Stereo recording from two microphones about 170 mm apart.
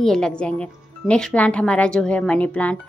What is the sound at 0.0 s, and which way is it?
Speech, 5° left (ahead or behind).